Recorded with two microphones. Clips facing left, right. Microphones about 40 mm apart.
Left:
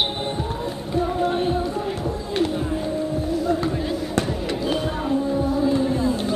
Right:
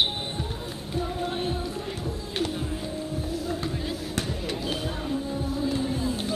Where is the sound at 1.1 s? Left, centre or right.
Centre.